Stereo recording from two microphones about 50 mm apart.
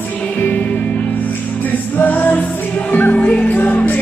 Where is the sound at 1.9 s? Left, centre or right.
Left.